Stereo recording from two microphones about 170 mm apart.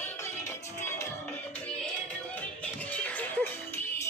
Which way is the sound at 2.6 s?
10° left (ahead or behind).